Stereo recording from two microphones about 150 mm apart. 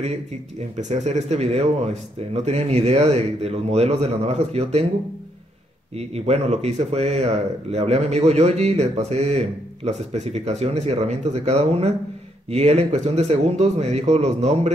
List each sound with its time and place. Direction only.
0.7 s speech: 50° right (ahead or behind)
5.9 s speech: 45° right (ahead or behind)